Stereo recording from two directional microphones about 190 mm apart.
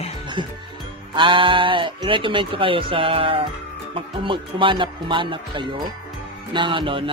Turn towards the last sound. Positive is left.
turn(degrees=-25)  # may be behind; listen again after turning